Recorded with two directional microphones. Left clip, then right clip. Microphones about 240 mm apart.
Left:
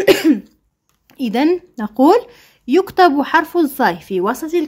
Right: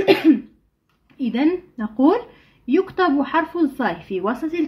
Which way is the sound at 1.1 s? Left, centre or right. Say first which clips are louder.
Left 5 dB; left.